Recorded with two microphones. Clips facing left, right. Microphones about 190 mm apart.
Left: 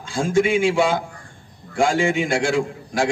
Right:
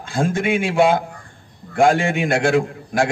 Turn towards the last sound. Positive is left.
turn(degrees=-60)  # may be behind; listen again after turning